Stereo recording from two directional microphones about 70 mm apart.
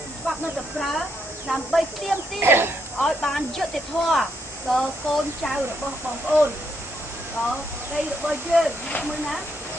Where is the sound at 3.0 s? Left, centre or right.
Centre.